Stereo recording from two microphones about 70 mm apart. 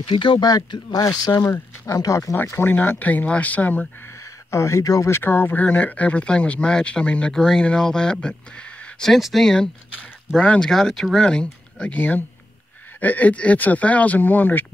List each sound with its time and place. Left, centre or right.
0.3 s speech: left
2.3 s speech: left
4.5 s speech: left
5.1 s speech: left